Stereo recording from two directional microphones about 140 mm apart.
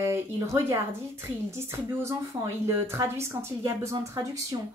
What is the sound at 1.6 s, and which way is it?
A woman's voice, 20° right (ahead or behind).